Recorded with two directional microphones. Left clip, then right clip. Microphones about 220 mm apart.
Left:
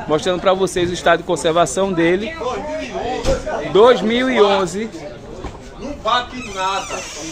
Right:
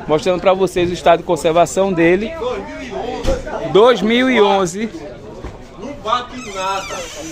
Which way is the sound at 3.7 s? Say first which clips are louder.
Right 1 dB; 30° right (ahead or behind).